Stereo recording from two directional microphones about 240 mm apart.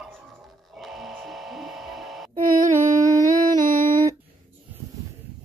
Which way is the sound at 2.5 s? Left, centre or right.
Right.